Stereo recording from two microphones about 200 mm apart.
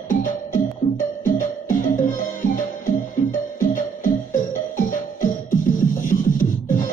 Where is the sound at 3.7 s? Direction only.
40° left (ahead or behind).